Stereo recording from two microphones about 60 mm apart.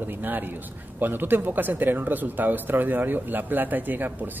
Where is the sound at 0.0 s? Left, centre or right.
Right.